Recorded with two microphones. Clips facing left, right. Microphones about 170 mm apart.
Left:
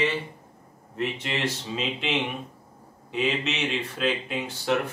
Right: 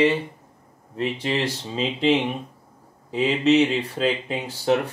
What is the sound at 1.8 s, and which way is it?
A man's voice, 35° right (ahead or behind).